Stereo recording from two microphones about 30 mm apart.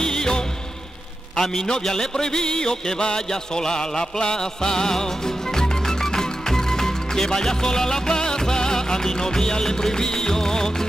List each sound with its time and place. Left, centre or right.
0.0 s music: left
1.3 s a sound: centre
1.7 s music: left